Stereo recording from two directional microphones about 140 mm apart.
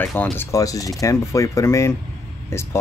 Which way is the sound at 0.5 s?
25° left (ahead or behind).